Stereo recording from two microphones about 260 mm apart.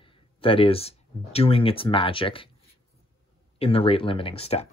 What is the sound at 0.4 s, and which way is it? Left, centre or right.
Speech, left.